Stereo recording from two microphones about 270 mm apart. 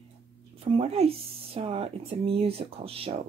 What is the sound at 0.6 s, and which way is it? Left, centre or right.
Speech, right.